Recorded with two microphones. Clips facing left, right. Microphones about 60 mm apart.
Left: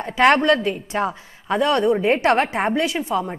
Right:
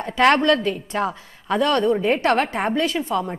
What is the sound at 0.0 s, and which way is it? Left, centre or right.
A woman's voice, centre.